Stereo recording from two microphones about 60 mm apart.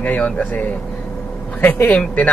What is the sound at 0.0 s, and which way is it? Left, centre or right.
A man's voice, left.